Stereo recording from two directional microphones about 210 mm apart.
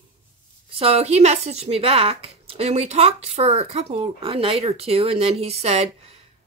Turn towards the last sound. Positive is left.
turn(degrees=-30)  # may be behind; listen again after turning